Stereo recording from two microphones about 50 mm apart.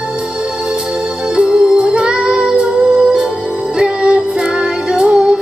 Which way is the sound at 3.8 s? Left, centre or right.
Centre.